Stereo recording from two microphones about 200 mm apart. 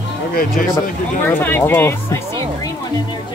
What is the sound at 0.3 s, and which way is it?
Speech, 45° left (ahead or behind).